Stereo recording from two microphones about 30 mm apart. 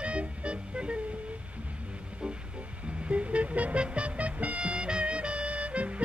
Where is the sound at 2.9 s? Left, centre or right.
Right.